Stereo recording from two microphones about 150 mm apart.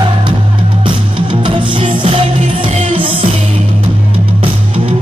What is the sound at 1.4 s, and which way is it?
Music, 35° right (ahead or behind).